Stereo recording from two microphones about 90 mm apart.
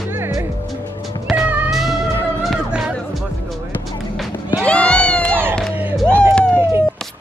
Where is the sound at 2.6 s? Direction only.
10° right (ahead or behind).